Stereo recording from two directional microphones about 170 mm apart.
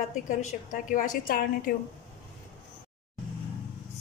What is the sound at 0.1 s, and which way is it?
A woman's voice, 50° left (ahead or behind).